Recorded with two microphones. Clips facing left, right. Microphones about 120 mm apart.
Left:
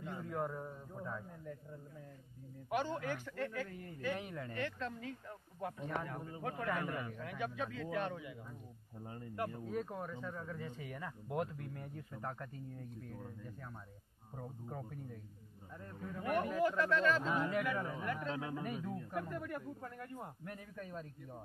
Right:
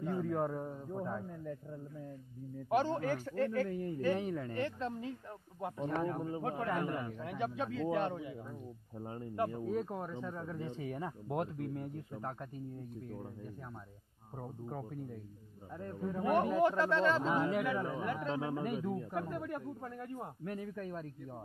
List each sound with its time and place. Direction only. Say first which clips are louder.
0.0 s a sound: right 9 dB; 50° right (ahead or behind)
0.3 s speech: right 5 dB; 25° right (ahead or behind)
2.7 s speech: right 5 dB; 35° right (ahead or behind); by 12.4 s 20° right (ahead or behind)
14.7 s speech: right 4 dB; 10° right (ahead or behind)
16.0 s speech: right 5 dB; 25° right (ahead or behind)